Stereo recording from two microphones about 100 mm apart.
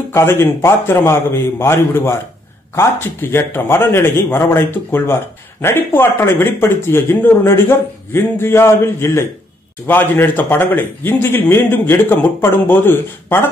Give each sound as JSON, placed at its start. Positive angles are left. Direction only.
{"t": 0.1, "sound": "speech", "side_deg": 25}